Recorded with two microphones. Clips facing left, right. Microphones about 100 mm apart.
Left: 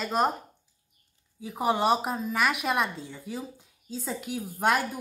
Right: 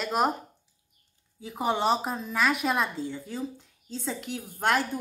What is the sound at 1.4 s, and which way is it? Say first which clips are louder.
Speech: left 1 dB; centre (ahead or behind).